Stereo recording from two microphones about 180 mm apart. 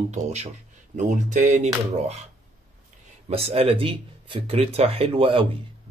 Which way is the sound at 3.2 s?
35° right (ahead or behind).